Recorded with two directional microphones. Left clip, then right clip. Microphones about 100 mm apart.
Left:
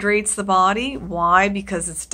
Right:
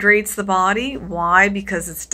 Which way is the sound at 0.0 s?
25° left (ahead or behind).